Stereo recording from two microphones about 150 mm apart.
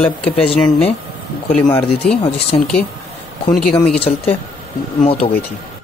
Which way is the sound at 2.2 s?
40° left (ahead or behind).